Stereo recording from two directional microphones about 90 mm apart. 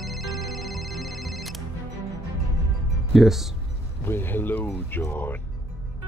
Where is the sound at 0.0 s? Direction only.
Centre (ahead or behind).